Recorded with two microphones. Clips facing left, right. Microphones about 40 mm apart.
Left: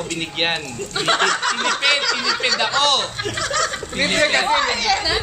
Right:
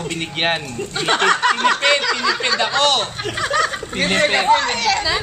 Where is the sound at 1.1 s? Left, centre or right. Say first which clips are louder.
Even; centre.